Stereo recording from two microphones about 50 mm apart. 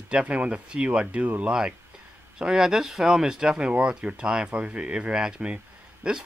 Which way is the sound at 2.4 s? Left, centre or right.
Centre.